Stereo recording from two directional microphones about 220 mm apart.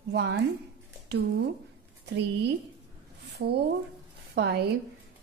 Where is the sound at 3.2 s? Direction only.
50° right (ahead or behind).